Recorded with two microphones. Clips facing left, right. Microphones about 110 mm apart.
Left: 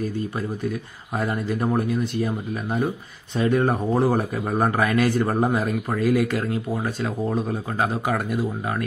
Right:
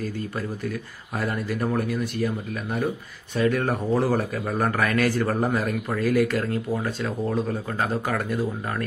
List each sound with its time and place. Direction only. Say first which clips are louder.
0.7 s speech: left 3 dB; 20° left (ahead or behind)